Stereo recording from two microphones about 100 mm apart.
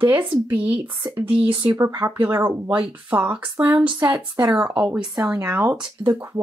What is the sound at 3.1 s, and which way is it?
Speech, 15° right (ahead or behind).